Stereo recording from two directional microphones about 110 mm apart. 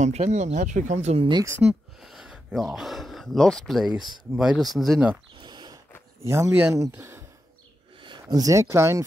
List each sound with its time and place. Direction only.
0.0 s speech: 85° right
1.6 s speech: 5° right (ahead or behind)
5.4 s a sound: 40° right (ahead or behind)
6.2 s speech: 25° right (ahead or behind)
8.0 s a sound: 45° right (ahead or behind)
8.4 s speech: 30° right (ahead or behind)